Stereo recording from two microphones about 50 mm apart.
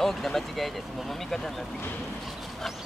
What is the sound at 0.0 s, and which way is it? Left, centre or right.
Speech, centre.